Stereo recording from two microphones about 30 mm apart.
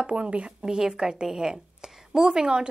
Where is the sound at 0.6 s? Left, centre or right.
Right.